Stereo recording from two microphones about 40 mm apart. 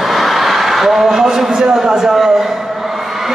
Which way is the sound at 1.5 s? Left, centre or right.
Right.